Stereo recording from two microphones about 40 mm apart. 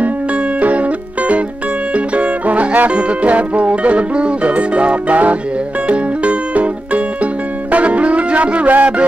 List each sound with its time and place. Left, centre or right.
0.6 s music: right